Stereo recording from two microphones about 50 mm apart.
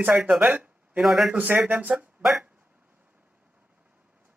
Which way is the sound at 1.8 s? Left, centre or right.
Right.